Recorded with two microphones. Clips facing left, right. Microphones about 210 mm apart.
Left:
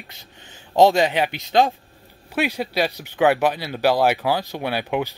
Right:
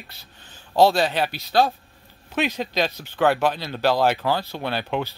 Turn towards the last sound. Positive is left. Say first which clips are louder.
# left 2 dB
turn(degrees=10)  # may be behind; listen again after turning